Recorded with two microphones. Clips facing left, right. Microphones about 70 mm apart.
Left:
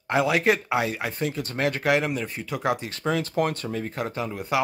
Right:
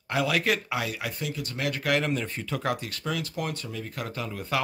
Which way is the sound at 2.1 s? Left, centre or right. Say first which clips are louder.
Left 1 dB; centre.